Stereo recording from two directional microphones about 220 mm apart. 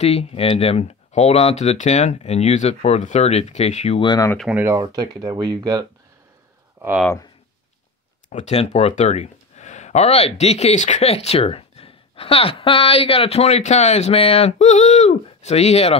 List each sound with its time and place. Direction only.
0.0 s speech: 30° left (ahead or behind)
4.4 s speech: 5° right (ahead or behind)
4.7 s speech: 20° right (ahead or behind)
6.8 s speech: 5° right (ahead or behind)
8.3 s speech: 30° left (ahead or behind)